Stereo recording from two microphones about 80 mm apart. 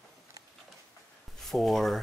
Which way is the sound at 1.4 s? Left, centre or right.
Centre.